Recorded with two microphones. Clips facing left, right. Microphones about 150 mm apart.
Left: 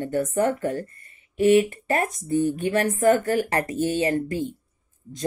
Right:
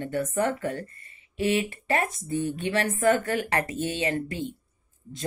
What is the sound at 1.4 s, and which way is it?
A woman's voice, 45° left (ahead or behind).